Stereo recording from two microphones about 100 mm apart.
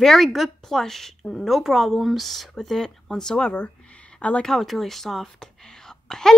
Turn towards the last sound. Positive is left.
turn(degrees=5)  # may be behind; listen again after turning